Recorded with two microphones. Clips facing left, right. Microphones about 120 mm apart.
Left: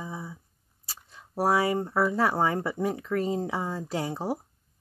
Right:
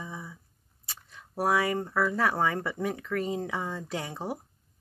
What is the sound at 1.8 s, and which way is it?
Speech, 25° left (ahead or behind).